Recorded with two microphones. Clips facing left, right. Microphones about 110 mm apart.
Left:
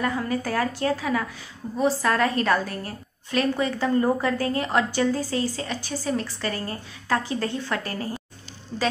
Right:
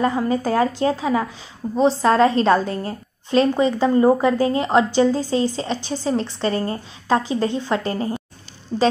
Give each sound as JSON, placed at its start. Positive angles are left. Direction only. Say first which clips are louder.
{"t": 0.0, "sound": "a woman's voice", "louder": "right 6 dB", "side_deg": -25}